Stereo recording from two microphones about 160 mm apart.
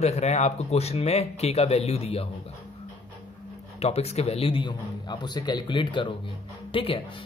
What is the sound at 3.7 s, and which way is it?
A man's voice, 40° left (ahead or behind).